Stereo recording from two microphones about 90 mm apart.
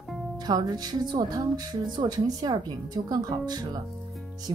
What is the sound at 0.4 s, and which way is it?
Speech, 50° right (ahead or behind).